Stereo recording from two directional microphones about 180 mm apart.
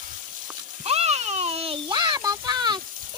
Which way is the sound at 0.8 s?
35° right (ahead or behind).